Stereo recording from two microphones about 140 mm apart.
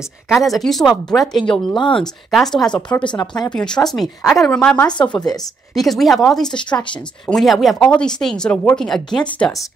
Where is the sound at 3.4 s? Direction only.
5° left (ahead or behind).